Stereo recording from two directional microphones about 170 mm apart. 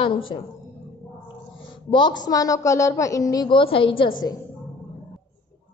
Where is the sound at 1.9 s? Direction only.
25° left (ahead or behind).